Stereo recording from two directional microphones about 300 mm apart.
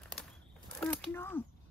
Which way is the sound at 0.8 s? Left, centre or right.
Centre.